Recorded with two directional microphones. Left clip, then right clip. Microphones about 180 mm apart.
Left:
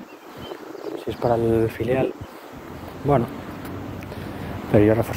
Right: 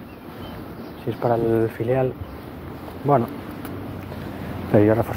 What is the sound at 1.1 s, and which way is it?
Speech, 20° left (ahead or behind).